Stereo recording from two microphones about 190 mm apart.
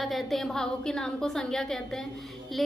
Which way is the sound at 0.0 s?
Centre (ahead or behind).